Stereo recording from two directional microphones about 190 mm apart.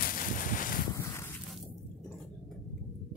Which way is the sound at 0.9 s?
15° left (ahead or behind).